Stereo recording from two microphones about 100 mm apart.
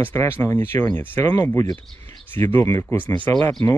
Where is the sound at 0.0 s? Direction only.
25° left (ahead or behind).